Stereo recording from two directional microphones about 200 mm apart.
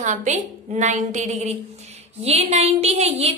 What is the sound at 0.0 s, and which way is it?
A woman's voice, 35° right (ahead or behind).